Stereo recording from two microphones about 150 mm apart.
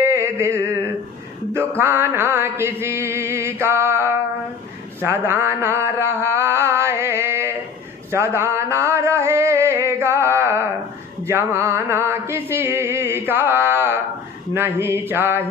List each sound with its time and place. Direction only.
0.0 s a sound: 15° right (ahead or behind)
1.8 s mantra: 15° right (ahead or behind)
8.1 s music: 15° right (ahead or behind)
11.2 s chant: 15° right (ahead or behind)